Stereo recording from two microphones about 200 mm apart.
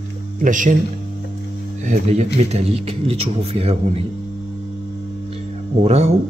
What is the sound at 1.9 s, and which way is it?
Mantra, 35° right (ahead or behind).